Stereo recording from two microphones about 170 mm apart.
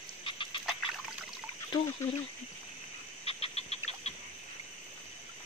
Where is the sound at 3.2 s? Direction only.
35° left (ahead or behind).